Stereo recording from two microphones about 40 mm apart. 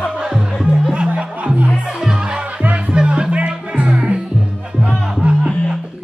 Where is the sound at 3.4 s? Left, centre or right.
Right.